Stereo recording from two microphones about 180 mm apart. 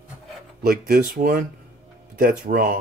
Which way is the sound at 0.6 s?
55° right (ahead or behind).